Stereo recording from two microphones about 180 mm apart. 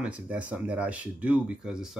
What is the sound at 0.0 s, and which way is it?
Speech, 5° right (ahead or behind).